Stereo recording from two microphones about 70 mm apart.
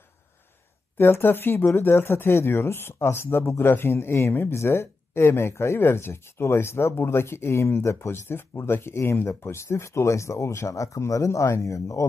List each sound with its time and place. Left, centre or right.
0.9 s speech: left